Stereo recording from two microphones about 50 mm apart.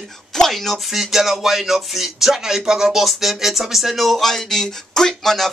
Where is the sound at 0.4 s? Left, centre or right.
Centre.